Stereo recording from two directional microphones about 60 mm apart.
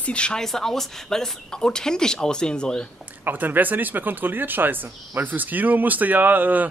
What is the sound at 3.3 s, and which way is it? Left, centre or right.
Speech, right.